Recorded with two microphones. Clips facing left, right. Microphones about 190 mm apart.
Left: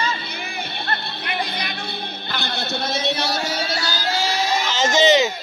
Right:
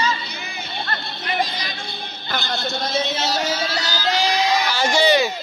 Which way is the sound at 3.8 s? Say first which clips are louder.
Right 2 dB; 15° right (ahead or behind).